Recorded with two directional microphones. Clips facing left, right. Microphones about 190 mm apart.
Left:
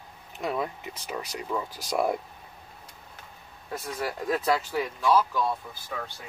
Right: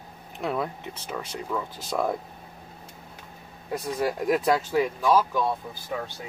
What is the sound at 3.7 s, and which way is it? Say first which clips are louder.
Speech: right 5 dB; 15° right (ahead or behind).